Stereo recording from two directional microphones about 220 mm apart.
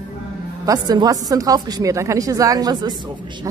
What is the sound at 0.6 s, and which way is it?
A woman's voice, 15° right (ahead or behind).